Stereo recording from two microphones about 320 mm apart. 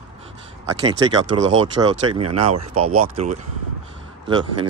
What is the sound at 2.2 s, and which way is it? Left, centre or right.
Speech, right.